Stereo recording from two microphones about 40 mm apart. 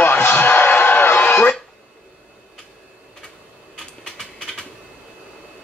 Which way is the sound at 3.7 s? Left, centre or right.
Centre.